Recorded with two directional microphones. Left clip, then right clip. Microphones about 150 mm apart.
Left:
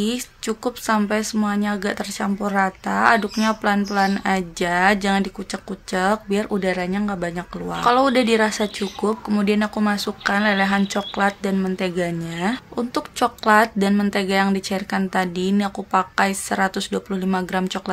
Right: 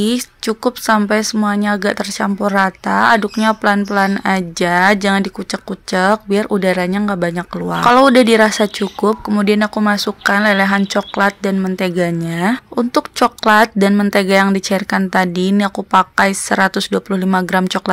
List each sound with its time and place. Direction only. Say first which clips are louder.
0.0 s speech: right 7 dB; 45° right (ahead or behind)